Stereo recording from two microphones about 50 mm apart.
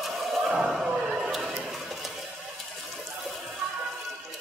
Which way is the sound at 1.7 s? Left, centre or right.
Centre.